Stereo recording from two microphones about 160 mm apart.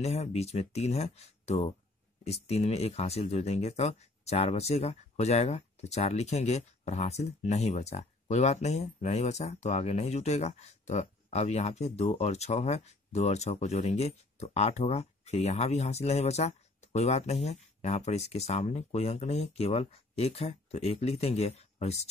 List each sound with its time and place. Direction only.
0.0 s speech: 40° left (ahead or behind)